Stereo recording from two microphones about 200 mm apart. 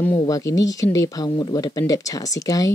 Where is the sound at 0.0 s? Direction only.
15° left (ahead or behind).